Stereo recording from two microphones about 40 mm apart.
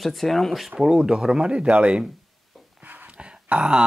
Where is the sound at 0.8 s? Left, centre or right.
Centre.